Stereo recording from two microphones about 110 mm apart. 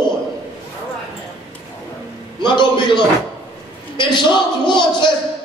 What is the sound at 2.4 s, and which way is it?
Speech, 45° left (ahead or behind).